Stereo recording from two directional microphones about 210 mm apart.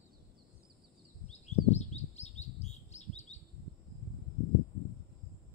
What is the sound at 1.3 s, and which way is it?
Bird, 30° left (ahead or behind).